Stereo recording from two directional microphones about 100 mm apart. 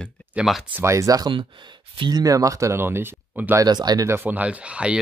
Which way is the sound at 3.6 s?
40° right (ahead or behind).